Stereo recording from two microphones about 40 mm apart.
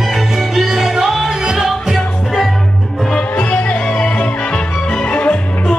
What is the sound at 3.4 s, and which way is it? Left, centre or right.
Music, left.